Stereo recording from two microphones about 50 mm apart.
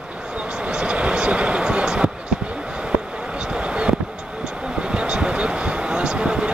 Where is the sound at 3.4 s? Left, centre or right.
Centre.